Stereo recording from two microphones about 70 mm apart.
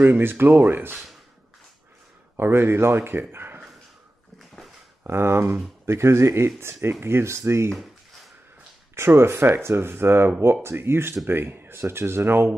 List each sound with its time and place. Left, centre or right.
0.0 s speech: right
2.3 s speech: right
5.0 s speech: right
8.9 s speech: right